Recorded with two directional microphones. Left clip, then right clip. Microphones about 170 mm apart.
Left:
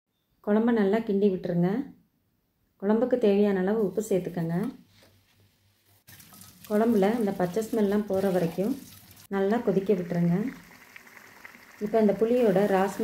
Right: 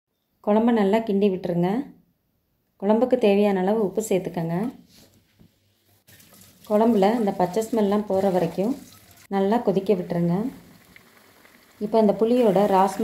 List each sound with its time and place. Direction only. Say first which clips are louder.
0.5 s a woman's voice: right 4 dB; 30° right (ahead or behind)
2.8 s a woman's voice: right 5 dB; 30° right (ahead or behind)
6.7 s a woman's voice: right 5 dB; 30° right (ahead or behind)
11.9 s speech: right 4 dB; 35° right (ahead or behind)